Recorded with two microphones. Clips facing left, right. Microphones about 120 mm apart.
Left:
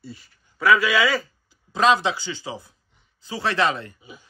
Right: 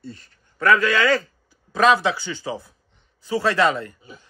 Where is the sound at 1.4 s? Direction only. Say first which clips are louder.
Right 2 dB; 20° left (ahead or behind).